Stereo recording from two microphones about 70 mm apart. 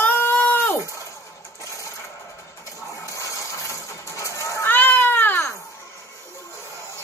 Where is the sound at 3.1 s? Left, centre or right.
Left.